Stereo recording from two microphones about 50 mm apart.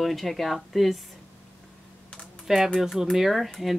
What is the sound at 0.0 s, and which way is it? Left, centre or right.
Speech, centre.